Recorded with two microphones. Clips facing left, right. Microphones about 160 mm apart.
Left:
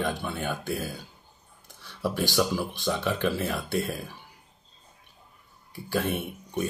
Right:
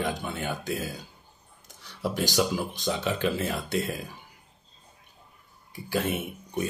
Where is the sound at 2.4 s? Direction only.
20° right (ahead or behind).